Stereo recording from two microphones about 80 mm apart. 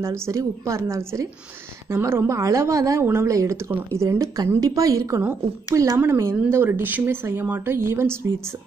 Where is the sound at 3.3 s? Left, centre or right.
Right.